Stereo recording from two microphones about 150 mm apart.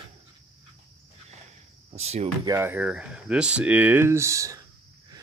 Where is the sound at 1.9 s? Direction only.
45° right (ahead or behind).